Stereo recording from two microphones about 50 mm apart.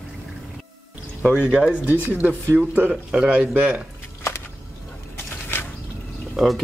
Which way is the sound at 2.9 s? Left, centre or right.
Centre.